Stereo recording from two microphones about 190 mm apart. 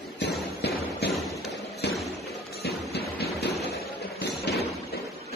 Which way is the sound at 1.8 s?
60° left (ahead or behind).